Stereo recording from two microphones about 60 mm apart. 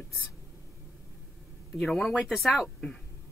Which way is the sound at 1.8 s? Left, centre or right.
Centre.